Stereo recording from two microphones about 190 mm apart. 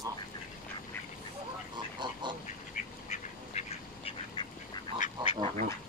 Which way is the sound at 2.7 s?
35° left (ahead or behind).